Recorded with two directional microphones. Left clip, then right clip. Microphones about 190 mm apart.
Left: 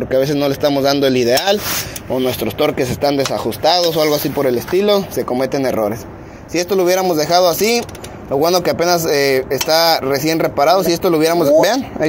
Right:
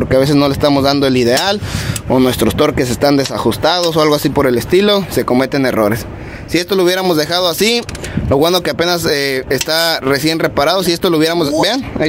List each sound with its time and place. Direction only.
0.1 s speech: 30° right (ahead or behind)
11.4 s speech: 10° right (ahead or behind)